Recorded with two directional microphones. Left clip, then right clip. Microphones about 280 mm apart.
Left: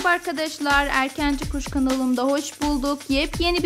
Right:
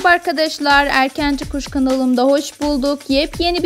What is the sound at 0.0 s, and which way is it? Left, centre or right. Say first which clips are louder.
Speech: right 8 dB; centre.